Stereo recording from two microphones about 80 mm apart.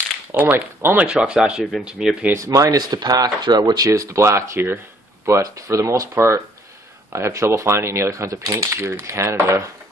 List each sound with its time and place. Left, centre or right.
0.3 s speech: right
1.1 s speech: centre
2.3 s speech: right